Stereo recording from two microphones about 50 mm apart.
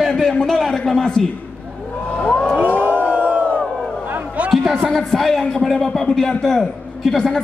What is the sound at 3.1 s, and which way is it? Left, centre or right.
Crowd, right.